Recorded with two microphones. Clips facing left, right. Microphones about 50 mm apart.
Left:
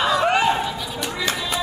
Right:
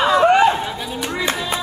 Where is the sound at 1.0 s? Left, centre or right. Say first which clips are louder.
Right 4 dB; right.